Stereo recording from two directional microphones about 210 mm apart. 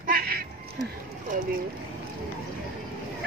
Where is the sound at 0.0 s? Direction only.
45° right (ahead or behind).